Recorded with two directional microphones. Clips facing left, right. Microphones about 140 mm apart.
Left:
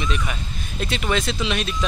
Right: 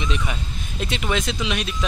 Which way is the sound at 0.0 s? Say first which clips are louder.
Even; 20° right (ahead or behind).